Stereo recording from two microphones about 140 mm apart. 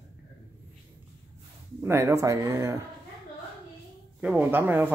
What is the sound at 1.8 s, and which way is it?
Speech, 15° right (ahead or behind).